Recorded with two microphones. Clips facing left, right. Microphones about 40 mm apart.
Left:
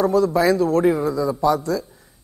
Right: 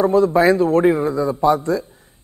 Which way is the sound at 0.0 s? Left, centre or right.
Right.